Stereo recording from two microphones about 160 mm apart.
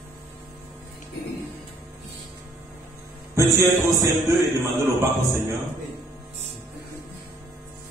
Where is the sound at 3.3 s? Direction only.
20° right (ahead or behind).